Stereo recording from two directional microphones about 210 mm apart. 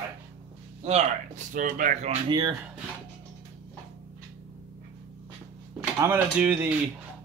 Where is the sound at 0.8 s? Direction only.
30° right (ahead or behind).